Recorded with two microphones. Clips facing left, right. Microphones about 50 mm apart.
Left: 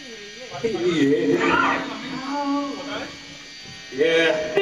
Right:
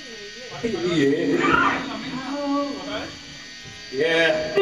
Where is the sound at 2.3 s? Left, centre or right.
Left.